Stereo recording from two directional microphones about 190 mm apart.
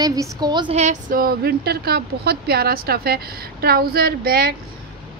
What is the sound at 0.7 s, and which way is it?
A woman's voice, 45° right (ahead or behind).